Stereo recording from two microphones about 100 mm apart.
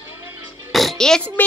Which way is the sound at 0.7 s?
5° left (ahead or behind).